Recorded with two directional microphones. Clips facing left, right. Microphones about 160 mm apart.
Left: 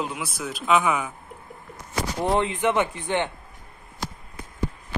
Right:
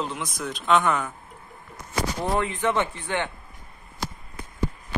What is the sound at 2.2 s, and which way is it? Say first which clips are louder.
Speech: left 3 dB; 20° left (ahead or behind).